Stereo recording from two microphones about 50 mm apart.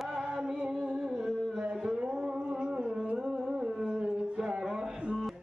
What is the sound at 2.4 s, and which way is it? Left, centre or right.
Music, centre.